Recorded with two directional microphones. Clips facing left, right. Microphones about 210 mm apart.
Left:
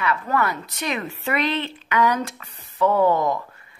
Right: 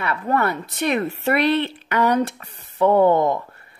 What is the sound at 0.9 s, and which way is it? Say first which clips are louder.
Speech: right 6 dB; 40° right (ahead or behind).